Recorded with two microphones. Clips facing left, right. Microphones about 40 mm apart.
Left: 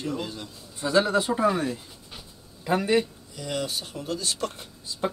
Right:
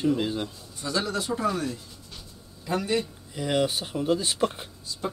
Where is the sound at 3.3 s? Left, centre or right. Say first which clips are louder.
Right 5 dB; right.